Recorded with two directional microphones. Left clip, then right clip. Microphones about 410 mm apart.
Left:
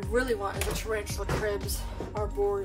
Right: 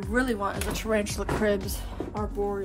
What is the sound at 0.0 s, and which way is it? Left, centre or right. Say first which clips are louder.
Speech: right 1 dB; centre.